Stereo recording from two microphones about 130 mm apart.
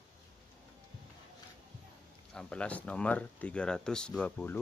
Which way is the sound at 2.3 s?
5° left (ahead or behind).